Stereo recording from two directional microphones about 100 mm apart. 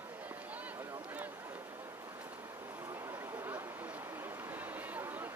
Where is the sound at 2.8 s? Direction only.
30° right (ahead or behind).